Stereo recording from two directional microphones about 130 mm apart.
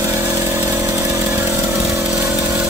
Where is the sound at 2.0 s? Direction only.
5° right (ahead or behind).